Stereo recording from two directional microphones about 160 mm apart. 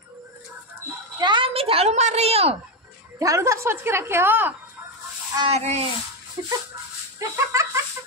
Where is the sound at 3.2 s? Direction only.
20° right (ahead or behind).